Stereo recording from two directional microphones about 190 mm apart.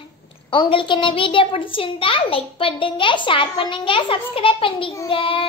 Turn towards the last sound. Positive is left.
turn(degrees=30)  # may be behind; listen again after turning